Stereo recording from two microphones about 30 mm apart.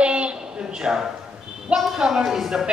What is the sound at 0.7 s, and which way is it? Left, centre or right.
A woman's voice, right.